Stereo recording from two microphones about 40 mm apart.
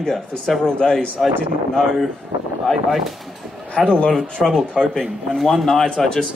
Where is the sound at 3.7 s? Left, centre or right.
Left.